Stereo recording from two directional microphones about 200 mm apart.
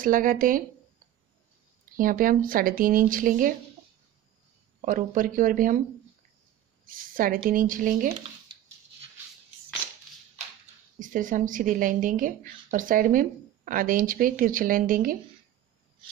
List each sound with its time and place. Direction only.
0.0 s a woman's voice: 45° right (ahead or behind)
2.0 s a woman's voice: 45° right (ahead or behind)
4.8 s speech: 40° right (ahead or behind)
6.9 s a woman's voice: 45° right (ahead or behind)
11.0 s a woman's voice: 40° right (ahead or behind)